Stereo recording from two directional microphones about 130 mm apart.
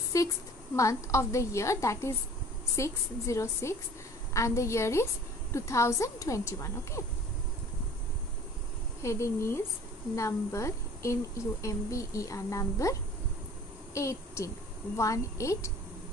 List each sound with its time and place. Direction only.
0.1 s a woman's voice: 25° left (ahead or behind)
9.0 s a woman's voice: 20° left (ahead or behind)
13.9 s a woman's voice: 25° left (ahead or behind)